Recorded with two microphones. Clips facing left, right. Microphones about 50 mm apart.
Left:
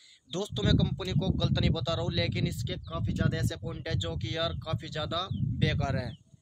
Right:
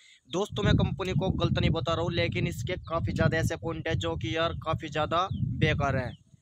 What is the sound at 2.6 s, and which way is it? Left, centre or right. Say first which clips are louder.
Speech: right 5 dB; right.